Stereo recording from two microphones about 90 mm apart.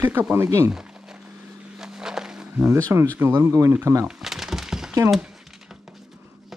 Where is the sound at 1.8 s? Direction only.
5° right (ahead or behind).